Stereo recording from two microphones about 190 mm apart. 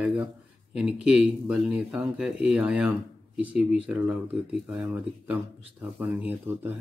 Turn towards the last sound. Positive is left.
turn(degrees=-10)  # may be behind; listen again after turning